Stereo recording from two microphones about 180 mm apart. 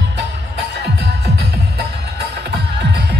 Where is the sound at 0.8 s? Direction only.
65° right (ahead or behind).